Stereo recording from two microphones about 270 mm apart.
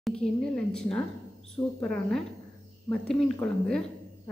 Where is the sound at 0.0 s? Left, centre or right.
Centre.